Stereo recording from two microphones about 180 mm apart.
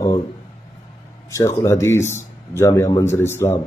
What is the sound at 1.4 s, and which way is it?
Speech, 15° left (ahead or behind).